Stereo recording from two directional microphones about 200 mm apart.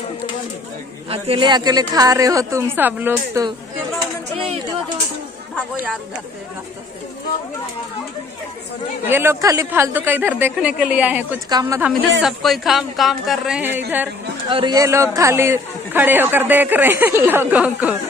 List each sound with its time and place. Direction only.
1.1 s a man's voice: 30° right (ahead or behind); by 3.4 s 10° right (ahead or behind)
9.1 s a man's voice: 10° right (ahead or behind)
11.4 s a woman's voice: 20° right (ahead or behind)
12.2 s speech: centre (ahead or behind)
14.5 s a man's voice: 20° right (ahead or behind)